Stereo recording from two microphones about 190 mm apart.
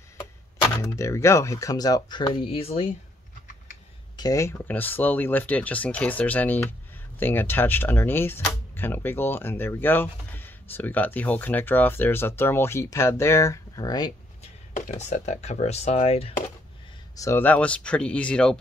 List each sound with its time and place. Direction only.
0.7 s speech: 15° left (ahead or behind); by 2.9 s 30° left (ahead or behind)
4.2 s speech: 15° left (ahead or behind)
14.4 s speech: 35° left (ahead or behind)
17.1 s speech: 15° left (ahead or behind)